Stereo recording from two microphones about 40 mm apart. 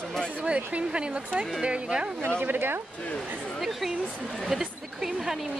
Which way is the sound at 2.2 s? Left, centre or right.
Right.